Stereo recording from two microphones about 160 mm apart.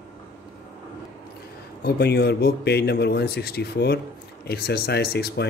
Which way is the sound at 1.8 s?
90° left.